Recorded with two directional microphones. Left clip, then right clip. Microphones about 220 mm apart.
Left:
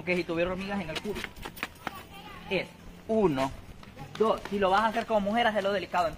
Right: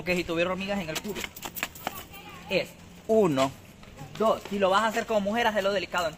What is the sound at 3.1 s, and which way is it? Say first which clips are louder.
A man's voice: right 4 dB; 50° right (ahead or behind).